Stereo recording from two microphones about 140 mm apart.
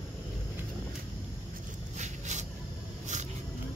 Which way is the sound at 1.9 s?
55° right (ahead or behind).